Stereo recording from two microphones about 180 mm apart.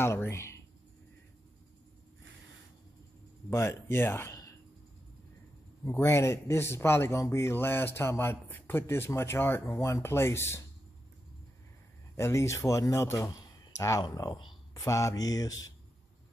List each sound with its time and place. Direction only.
0.0 s speech: 15° left (ahead or behind)
3.4 s speech: 15° left (ahead or behind)
5.9 s speech: 15° left (ahead or behind)
12.2 s speech: 15° left (ahead or behind)